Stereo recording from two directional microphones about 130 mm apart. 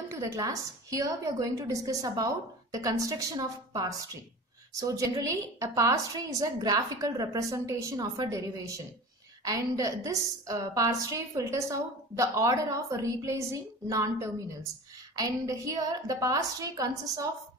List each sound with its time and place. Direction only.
0.1 s a woman's voice: 20° right (ahead or behind)